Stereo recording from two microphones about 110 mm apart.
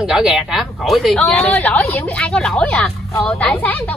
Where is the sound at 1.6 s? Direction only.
15° left (ahead or behind).